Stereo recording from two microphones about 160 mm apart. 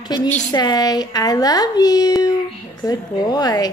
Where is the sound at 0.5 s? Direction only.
25° left (ahead or behind).